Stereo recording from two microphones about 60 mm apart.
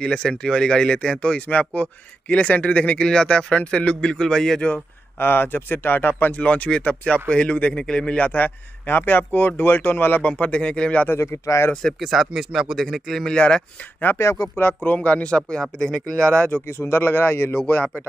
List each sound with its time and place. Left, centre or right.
0.0 s speech: centre
5.2 s a man's voice: left
10.2 s a man's voice: left
11.1 s speech: left
12.0 s speech: centre
14.6 s speech: left
15.0 s speech: centre
16.4 s speech: left
16.7 s speech: left